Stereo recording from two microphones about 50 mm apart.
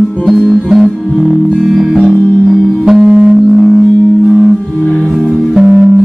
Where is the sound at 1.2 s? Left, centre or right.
Centre.